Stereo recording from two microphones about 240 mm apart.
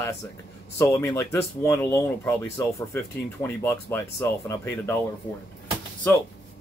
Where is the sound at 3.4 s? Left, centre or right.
Centre.